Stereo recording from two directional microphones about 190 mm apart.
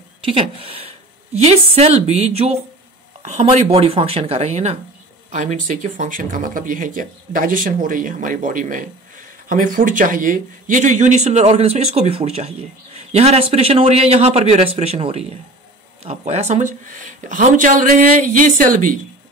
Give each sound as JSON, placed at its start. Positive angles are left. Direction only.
{"t": 0.2, "sound": "a woman's voice", "side_deg": -30}